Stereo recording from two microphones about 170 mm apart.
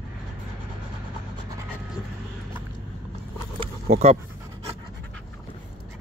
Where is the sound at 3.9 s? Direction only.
65° right (ahead or behind).